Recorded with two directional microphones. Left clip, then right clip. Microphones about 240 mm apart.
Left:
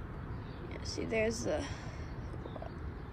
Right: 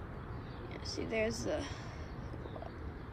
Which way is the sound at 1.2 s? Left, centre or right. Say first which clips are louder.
Left 2 dB; right.